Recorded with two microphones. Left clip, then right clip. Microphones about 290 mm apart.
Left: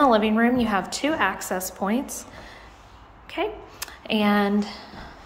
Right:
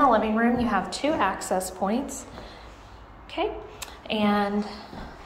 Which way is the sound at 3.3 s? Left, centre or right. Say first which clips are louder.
Left 1 dB; centre.